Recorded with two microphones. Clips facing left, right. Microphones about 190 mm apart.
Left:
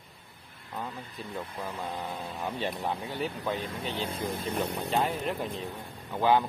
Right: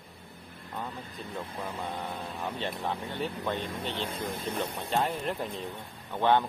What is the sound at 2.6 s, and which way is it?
Speech, 20° left (ahead or behind).